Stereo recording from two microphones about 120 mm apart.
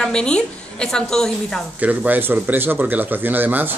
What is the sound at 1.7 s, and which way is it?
Speech, 15° right (ahead or behind).